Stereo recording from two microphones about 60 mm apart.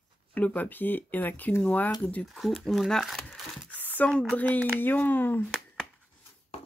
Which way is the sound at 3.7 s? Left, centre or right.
Left.